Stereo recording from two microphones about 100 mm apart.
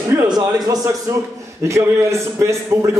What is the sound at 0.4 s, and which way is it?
A man's voice, 40° right (ahead or behind).